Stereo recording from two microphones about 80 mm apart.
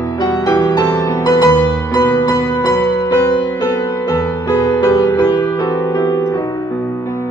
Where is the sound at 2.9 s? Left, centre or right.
Left.